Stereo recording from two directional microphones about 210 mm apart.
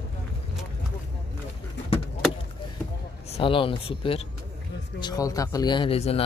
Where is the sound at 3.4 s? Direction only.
25° left (ahead or behind).